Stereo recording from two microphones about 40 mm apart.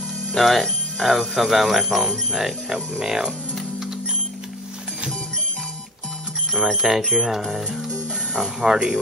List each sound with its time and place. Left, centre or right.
0.3 s speech: centre
6.5 s speech: centre